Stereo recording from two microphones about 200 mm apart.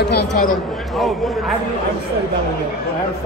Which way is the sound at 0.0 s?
55° left (ahead or behind).